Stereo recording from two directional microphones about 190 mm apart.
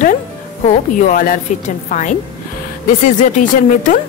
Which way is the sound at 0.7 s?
40° left (ahead or behind).